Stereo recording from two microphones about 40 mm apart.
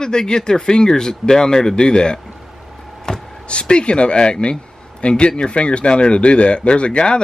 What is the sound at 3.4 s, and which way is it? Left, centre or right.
Speech, left.